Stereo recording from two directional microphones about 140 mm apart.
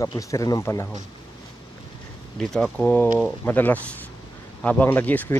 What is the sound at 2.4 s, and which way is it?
A man's voice, 5° left (ahead or behind).